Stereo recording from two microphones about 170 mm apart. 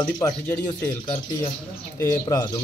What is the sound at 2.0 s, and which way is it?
Speech, 20° left (ahead or behind).